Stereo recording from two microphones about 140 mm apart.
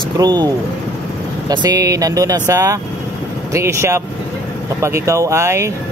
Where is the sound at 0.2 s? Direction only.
30° right (ahead or behind).